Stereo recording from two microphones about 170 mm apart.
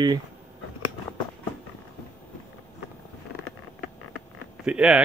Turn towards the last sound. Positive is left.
turn(degrees=-5)  # may be behind; listen again after turning